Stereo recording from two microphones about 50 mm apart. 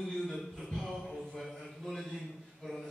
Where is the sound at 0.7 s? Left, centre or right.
Centre.